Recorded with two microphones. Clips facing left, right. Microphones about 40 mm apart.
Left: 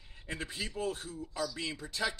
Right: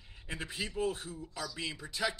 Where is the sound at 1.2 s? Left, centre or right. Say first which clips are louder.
Left 3 dB; centre.